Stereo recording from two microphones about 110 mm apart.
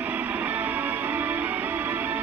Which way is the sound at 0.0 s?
15° right (ahead or behind).